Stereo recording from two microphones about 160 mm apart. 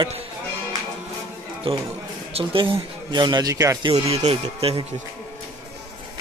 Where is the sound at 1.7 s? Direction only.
35° right (ahead or behind).